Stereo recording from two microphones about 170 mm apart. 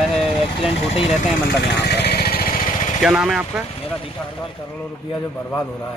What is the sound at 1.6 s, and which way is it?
Vehicle, 85° left.